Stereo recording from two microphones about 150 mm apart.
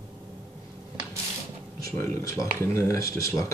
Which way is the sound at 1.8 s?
20° left (ahead or behind).